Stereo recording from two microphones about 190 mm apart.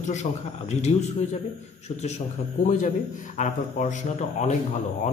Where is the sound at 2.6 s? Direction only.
40° left (ahead or behind).